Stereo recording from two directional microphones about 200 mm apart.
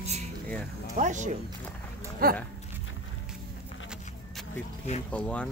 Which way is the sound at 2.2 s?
45° right (ahead or behind).